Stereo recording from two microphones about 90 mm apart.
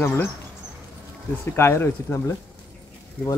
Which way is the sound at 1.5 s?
25° left (ahead or behind).